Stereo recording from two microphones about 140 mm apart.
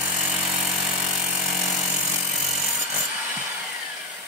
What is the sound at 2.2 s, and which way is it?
Wood, 5° right (ahead or behind).